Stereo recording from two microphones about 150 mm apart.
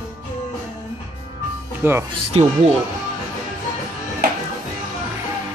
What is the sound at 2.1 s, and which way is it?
Speech, 45° right (ahead or behind).